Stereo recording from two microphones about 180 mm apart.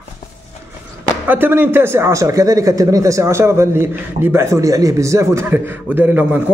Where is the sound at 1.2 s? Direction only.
10° right (ahead or behind).